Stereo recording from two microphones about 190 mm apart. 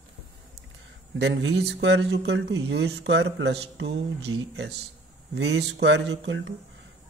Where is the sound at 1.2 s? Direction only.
70° right (ahead or behind).